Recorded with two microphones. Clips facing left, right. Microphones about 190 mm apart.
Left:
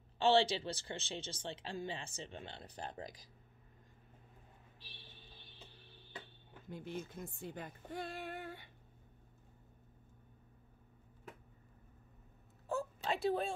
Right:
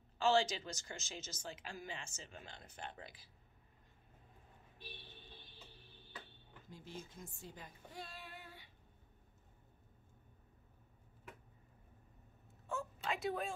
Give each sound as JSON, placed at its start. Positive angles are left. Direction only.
{"t": 0.2, "sound": "speech", "side_deg": 35}
{"t": 6.7, "sound": "speech", "side_deg": 60}
{"t": 12.6, "sound": "whimper", "side_deg": 35}